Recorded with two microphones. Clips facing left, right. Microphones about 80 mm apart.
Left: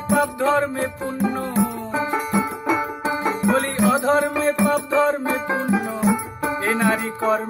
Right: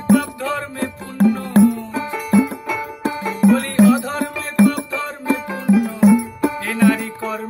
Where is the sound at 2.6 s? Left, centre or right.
Left.